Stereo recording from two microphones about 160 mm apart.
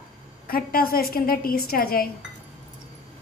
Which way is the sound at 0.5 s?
65° left (ahead or behind).